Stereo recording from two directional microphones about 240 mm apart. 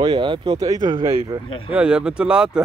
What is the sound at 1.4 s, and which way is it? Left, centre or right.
Speech, left.